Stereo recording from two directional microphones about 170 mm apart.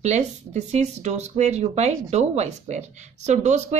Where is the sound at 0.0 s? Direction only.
40° right (ahead or behind).